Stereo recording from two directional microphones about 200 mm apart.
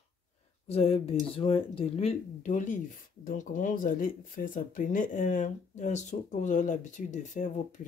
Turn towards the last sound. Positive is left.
turn(degrees=40)  # may be behind; listen again after turning